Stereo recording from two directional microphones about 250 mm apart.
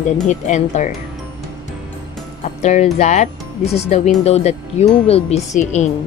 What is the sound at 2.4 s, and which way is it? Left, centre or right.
Speech, left.